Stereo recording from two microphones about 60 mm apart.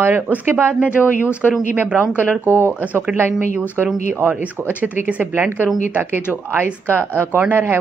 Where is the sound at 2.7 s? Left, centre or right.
Right.